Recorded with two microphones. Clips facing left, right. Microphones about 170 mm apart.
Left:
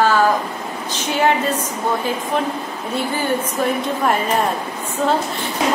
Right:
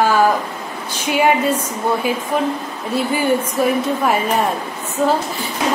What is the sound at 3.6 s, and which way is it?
Speech, 10° right (ahead or behind).